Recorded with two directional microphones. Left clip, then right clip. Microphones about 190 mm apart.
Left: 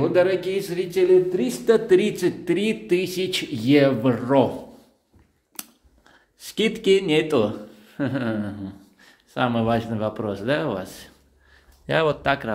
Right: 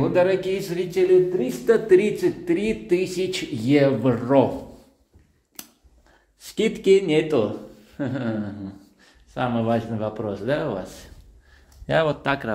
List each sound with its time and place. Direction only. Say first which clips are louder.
0.0 s speech: even; 15° left (ahead or behind)
1.4 s speech: even; 15° left (ahead or behind)
5.5 s a sound: left 3 dB; 10° left (ahead or behind)
6.4 s speech: even; 5° left (ahead or behind)